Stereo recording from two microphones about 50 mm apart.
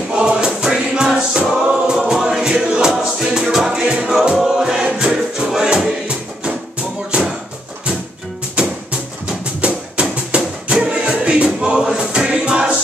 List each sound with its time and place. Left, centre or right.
0.2 s music: centre
1.7 s choir: centre
2.5 s music: centre
8.6 s music: right
11.8 s a sound: centre
12.1 s music: centre